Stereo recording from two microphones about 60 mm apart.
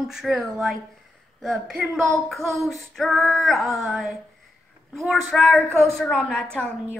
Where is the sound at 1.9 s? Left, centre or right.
Centre.